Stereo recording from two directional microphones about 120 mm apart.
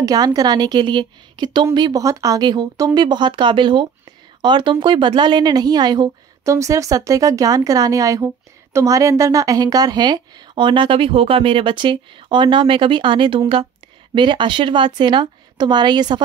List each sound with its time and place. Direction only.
0.0 s a woman's voice: 30° right (ahead or behind)